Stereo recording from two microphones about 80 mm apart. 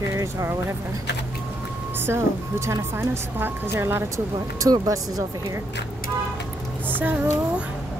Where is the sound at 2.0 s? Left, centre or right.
Right.